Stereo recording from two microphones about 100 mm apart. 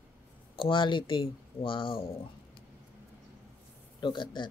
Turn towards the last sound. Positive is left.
turn(degrees=50)  # may be behind; listen again after turning